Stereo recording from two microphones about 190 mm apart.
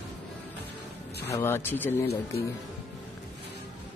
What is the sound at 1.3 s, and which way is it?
Speech, 15° left (ahead or behind).